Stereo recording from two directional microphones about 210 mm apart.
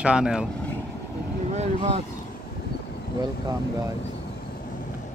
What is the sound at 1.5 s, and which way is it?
Vehicle, 30° right (ahead or behind).